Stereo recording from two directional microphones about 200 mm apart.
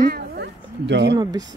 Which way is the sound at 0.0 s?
55° right (ahead or behind).